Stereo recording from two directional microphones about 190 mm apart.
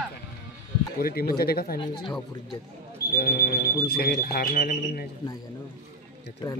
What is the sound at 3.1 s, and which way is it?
Speech, 50° left (ahead or behind).